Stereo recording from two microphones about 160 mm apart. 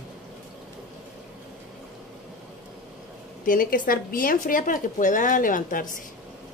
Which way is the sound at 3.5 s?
60° left (ahead or behind).